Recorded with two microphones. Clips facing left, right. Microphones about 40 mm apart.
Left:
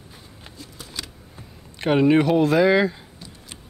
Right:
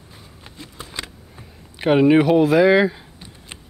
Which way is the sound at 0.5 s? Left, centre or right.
Right.